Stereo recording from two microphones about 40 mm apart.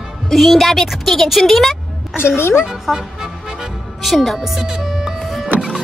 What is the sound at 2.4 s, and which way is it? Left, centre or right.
Speech, left.